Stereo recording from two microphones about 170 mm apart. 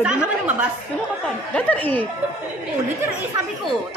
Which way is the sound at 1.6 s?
10° left (ahead or behind).